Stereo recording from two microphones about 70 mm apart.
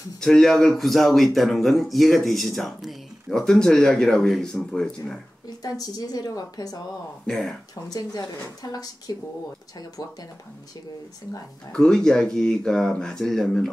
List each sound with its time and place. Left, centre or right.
0.2 s speech: centre
5.6 s a woman's voice: left
7.2 s speech: centre
7.9 s a woman's voice: left
11.7 s speech: centre